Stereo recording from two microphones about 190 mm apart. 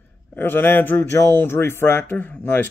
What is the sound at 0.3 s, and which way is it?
Speech, 10° left (ahead or behind).